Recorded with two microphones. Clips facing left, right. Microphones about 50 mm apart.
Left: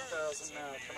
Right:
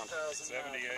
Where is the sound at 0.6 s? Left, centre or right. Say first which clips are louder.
Right 2 dB; right.